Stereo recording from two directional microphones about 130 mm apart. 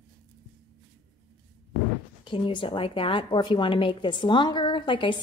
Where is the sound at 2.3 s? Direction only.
40° left (ahead or behind).